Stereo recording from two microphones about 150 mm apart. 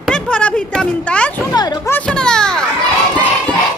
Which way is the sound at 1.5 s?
25° left (ahead or behind).